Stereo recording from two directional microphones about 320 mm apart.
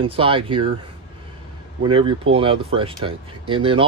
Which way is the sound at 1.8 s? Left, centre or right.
Centre.